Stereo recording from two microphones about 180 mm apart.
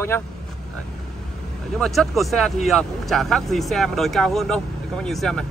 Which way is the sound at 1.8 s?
Centre (ahead or behind).